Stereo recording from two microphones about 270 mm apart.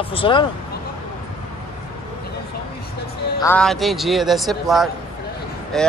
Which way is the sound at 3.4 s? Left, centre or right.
Centre.